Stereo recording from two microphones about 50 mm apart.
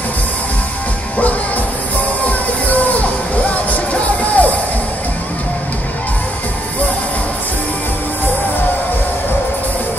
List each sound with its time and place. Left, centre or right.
2.2 s music: left